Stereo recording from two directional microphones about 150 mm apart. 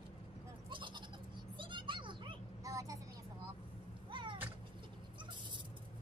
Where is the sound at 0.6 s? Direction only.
30° right (ahead or behind).